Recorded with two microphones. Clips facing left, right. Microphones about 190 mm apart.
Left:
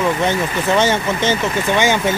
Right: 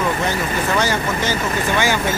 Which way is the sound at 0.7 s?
25° left (ahead or behind).